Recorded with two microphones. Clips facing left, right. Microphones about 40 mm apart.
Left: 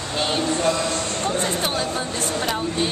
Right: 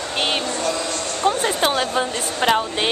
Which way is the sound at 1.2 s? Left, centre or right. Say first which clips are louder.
Right 7 dB; right.